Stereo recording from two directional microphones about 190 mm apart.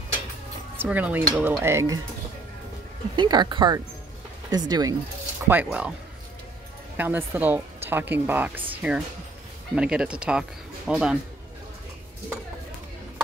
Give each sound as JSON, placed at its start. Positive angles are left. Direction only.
{"t": 0.7, "sound": "speech", "side_deg": -10}
{"t": 3.2, "sound": "speech", "side_deg": -25}
{"t": 5.5, "sound": "speech", "side_deg": -10}
{"t": 7.0, "sound": "speech", "side_deg": -10}